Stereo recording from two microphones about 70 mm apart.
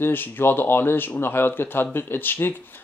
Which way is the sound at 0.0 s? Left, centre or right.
Left.